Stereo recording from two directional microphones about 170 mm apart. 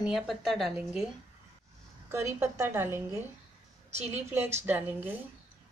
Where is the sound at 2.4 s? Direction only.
15° right (ahead or behind).